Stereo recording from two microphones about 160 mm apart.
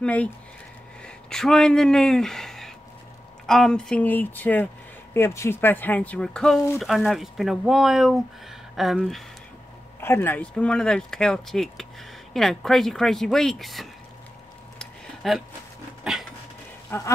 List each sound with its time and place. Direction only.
0.0 s speech: 10° left (ahead or behind)
9.9 s speech: 15° left (ahead or behind)
14.8 s a sound: centre (ahead or behind)
16.9 s speech: 15° left (ahead or behind)